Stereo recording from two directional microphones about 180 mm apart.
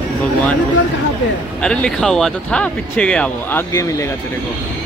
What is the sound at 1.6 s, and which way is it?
Speech, 5° left (ahead or behind).